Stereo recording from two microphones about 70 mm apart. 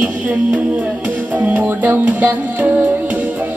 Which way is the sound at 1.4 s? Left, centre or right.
Right.